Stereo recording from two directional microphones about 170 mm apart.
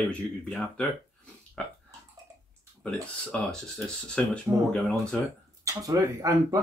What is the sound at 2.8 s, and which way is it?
Speech, 5° left (ahead or behind).